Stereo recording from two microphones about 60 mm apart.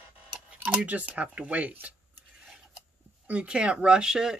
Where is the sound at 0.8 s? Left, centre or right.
Right.